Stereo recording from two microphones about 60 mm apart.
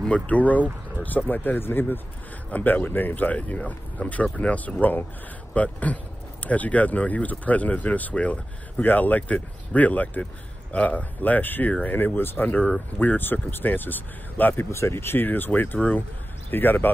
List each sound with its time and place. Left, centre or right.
0.1 s speech: left
14.7 s speech: left